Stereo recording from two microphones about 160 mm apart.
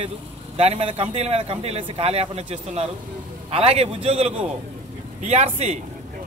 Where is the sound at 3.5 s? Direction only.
40° right (ahead or behind).